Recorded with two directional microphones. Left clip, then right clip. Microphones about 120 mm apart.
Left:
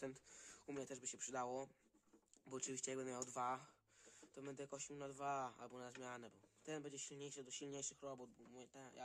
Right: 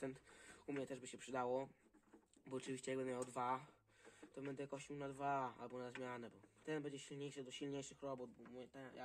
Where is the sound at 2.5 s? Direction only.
25° left (ahead or behind).